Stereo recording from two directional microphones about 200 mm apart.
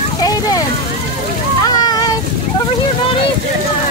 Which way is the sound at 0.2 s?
20° left (ahead or behind).